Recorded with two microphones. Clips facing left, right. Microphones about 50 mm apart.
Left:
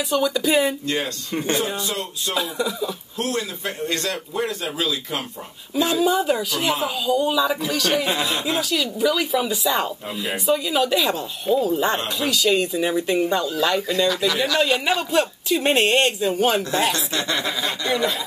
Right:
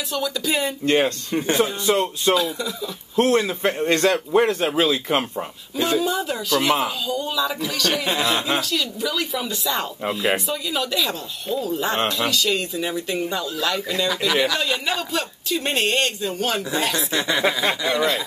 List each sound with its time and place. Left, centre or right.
0.1 s speech: centre
0.8 s a man's voice: right
2.3 s speech: centre
3.2 s a man's voice: right
5.9 s speech: centre
13.9 s speech: centre
14.6 s speech: centre
16.9 s speech: centre